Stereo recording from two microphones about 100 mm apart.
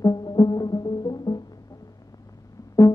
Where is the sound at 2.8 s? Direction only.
35° left (ahead or behind).